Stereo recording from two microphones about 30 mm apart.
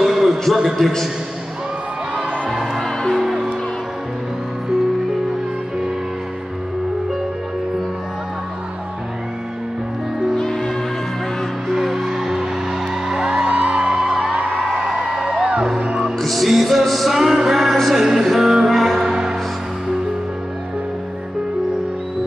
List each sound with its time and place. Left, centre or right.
0.0 s a sound: centre
2.8 s music: centre
10.3 s music: centre
11.8 s music: centre
13.1 s music: right
13.9 s music: centre
14.3 s music: right
14.9 s music: right
16.2 s music: centre
17.9 s music: centre
18.7 s music: centre
18.9 s music: centre